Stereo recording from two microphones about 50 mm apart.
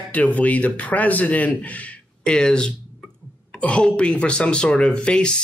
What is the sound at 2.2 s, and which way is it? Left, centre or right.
Speech, centre.